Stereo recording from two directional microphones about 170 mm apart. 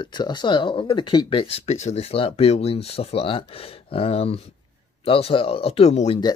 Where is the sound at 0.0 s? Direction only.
25° left (ahead or behind).